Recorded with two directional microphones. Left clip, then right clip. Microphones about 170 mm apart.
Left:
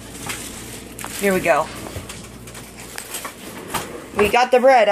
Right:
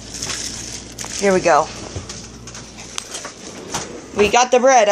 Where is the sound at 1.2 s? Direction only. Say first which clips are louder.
Right 3 dB; 20° right (ahead or behind).